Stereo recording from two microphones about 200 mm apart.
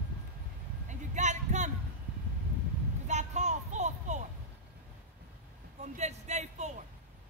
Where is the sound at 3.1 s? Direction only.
35° right (ahead or behind).